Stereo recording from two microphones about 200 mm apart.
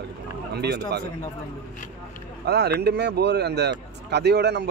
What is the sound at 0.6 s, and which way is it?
Speech, 55° right (ahead or behind).